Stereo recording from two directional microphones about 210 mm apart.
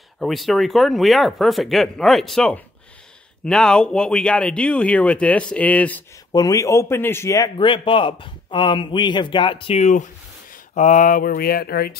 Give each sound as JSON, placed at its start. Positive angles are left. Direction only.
{"t": 0.2, "sound": "a man's voice", "side_deg": 0}